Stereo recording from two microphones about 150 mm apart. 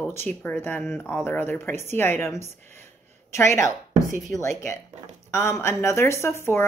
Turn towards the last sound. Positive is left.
turn(degrees=15)  # may be behind; listen again after turning